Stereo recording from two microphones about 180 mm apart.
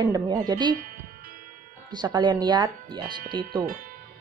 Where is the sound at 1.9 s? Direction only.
25° right (ahead or behind).